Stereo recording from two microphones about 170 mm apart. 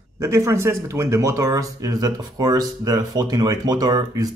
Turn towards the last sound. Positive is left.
turn(degrees=-20)  # may be behind; listen again after turning